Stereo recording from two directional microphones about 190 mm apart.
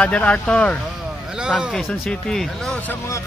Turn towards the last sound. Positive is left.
turn(degrees=10)  # may be behind; listen again after turning